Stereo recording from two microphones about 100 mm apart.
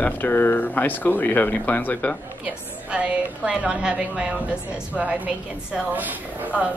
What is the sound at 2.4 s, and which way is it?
A woman's voice, 15° right (ahead or behind).